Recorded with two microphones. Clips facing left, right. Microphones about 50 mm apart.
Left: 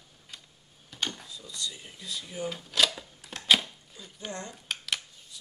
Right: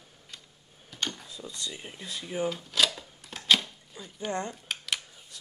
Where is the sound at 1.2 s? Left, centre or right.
Right.